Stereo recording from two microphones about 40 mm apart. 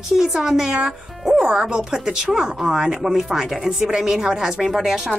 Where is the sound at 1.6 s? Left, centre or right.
Centre.